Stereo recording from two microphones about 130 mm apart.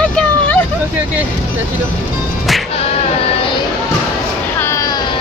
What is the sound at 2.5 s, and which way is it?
Music, centre (ahead or behind).